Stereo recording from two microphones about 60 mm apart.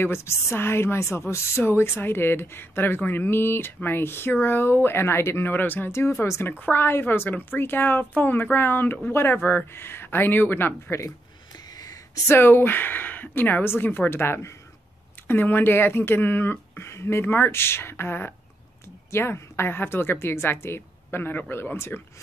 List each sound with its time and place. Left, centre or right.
0.0 s a woman's voice: left
6.7 s speech: left
11.7 s a sound: left
12.3 s speech: left
19.0 s speech: left